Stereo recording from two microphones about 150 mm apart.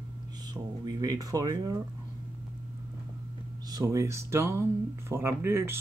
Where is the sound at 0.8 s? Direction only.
25° right (ahead or behind).